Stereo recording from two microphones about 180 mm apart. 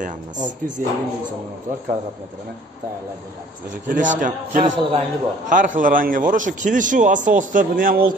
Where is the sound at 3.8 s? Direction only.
45° right (ahead or behind).